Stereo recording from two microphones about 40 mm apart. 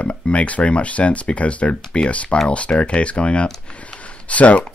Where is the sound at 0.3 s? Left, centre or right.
Left.